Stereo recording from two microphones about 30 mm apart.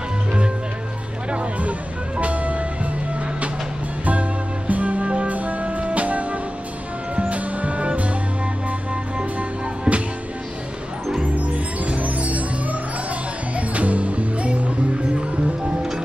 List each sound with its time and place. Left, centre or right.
1.3 s music: right
4.0 s music: right
9.2 s music: right
11.4 s music: right
13.6 s music: right